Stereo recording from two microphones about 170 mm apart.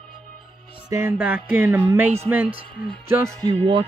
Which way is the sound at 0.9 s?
15° right (ahead or behind).